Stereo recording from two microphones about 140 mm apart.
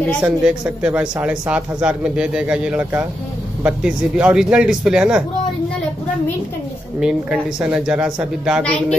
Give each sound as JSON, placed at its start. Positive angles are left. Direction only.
{"t": 0.2, "sound": "speech", "side_deg": -10}
{"t": 7.0, "sound": "speech", "side_deg": -5}
{"t": 8.6, "sound": "speech", "side_deg": 10}